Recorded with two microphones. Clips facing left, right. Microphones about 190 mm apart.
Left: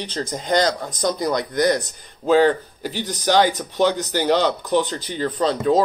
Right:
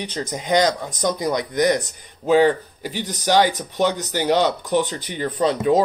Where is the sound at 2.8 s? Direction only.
45° left (ahead or behind).